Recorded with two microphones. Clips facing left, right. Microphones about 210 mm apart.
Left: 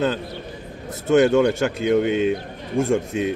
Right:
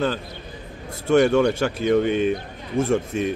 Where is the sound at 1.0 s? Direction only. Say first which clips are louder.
Left 1 dB; 15° left (ahead or behind).